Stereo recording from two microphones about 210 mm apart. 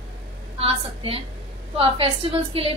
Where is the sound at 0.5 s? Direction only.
25° right (ahead or behind).